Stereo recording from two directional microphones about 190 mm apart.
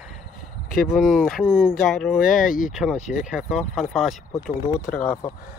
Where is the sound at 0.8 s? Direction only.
5° right (ahead or behind).